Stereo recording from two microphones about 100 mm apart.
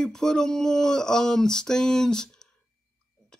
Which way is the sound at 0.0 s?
5° left (ahead or behind).